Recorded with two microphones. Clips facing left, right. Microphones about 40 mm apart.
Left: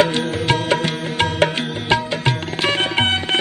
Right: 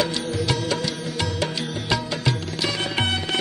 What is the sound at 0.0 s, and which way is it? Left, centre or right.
Music, left.